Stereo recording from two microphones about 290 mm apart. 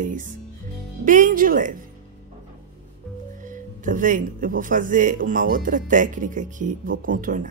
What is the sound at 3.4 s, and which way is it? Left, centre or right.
Speech, right.